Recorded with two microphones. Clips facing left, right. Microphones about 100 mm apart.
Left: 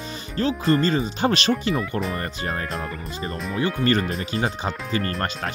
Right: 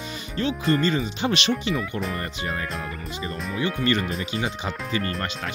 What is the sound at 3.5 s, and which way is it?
Speech, 40° left (ahead or behind).